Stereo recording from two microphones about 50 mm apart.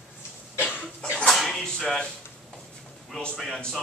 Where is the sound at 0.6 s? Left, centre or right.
Left.